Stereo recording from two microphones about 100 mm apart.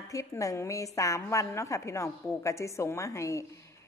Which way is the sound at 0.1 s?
30° left (ahead or behind).